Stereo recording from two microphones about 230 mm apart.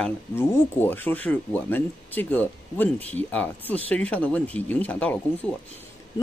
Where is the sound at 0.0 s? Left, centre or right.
Centre.